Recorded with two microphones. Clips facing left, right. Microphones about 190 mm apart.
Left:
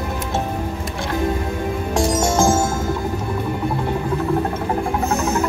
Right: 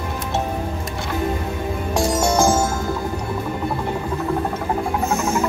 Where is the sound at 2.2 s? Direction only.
20° right (ahead or behind).